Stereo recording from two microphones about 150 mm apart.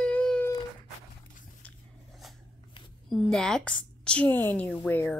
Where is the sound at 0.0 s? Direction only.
5° left (ahead or behind).